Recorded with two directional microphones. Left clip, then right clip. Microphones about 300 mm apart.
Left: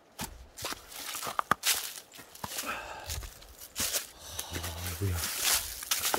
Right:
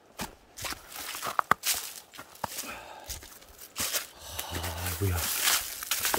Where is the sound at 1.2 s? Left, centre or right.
Centre.